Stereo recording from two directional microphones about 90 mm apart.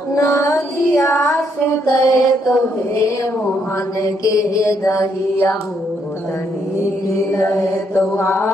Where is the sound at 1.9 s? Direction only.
40° left (ahead or behind).